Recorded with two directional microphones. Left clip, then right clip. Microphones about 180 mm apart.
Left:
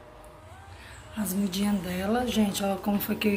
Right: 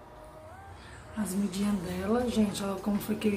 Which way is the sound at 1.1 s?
Centre (ahead or behind).